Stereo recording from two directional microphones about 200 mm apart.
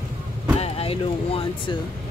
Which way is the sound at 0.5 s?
30° left (ahead or behind).